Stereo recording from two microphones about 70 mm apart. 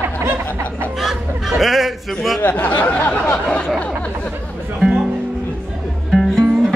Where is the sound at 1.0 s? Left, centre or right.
Centre.